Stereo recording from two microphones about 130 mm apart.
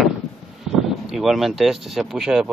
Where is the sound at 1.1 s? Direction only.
Centre (ahead or behind).